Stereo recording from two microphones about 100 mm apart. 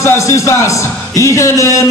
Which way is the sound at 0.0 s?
30° left (ahead or behind).